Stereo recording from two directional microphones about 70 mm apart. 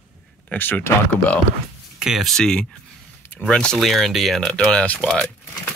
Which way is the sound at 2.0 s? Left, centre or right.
Centre.